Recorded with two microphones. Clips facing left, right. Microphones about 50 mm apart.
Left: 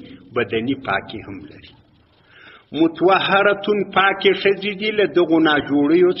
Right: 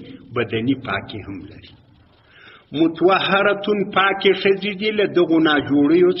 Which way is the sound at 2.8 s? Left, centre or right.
Left.